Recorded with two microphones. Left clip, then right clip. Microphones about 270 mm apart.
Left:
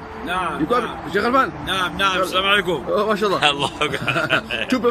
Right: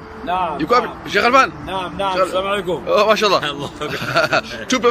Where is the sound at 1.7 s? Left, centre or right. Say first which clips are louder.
Left 2 dB; right.